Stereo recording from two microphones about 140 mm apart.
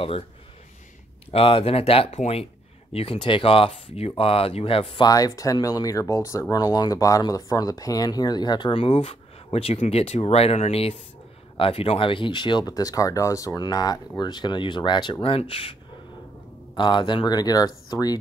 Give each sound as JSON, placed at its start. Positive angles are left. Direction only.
{"t": 1.3, "sound": "speech", "side_deg": 40}
{"t": 5.0, "sound": "speech", "side_deg": 25}
{"t": 16.7, "sound": "speech", "side_deg": 35}